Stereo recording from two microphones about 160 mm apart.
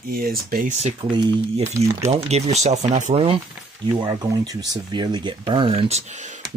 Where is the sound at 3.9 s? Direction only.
25° right (ahead or behind).